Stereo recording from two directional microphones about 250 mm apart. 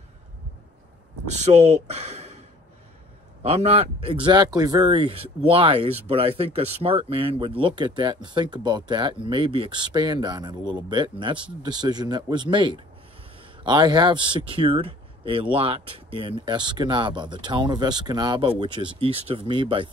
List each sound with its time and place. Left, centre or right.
1.3 s speech: right
3.4 s speech: right